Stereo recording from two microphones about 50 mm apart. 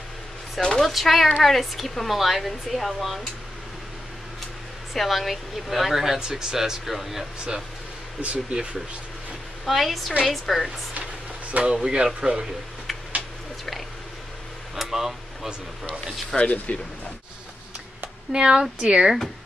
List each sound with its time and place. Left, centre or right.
0.7 s speech: centre
4.9 s speech: centre
8.2 s speech: right
9.7 s speech: centre
11.6 s speech: centre
14.8 s speech: centre
16.3 s speech: left
18.3 s speech: centre